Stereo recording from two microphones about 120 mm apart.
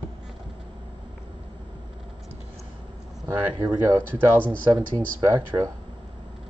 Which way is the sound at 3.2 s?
15° right (ahead or behind).